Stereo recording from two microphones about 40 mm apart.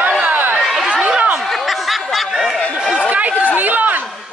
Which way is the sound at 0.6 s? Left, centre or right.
Centre.